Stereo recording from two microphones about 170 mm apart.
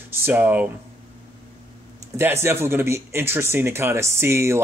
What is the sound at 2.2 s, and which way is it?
Speech, 15° right (ahead or behind).